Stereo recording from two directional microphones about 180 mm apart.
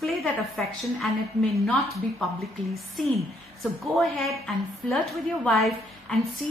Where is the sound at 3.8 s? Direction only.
Centre (ahead or behind).